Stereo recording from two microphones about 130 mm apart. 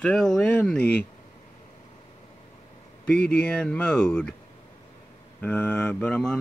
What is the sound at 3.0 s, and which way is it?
Speech, 10° left (ahead or behind).